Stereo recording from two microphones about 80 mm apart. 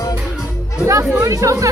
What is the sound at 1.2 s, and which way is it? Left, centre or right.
Speech, right.